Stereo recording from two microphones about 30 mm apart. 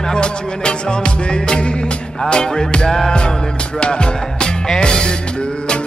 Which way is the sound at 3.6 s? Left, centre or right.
Left.